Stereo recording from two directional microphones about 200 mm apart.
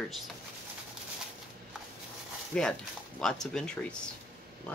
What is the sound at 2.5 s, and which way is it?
Speech, 5° left (ahead or behind).